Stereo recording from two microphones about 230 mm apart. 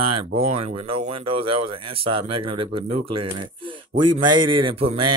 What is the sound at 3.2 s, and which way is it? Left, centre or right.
Speech, centre.